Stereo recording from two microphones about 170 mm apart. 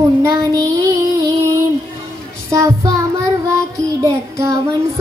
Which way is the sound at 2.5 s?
20° right (ahead or behind).